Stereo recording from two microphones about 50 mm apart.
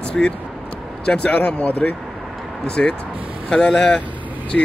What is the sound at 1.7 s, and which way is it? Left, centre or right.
Speech, left.